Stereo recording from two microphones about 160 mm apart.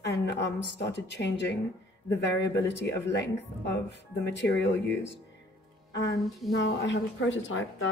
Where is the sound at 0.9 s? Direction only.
90° left.